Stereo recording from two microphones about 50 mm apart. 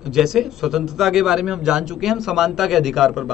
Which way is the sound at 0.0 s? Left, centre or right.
Centre.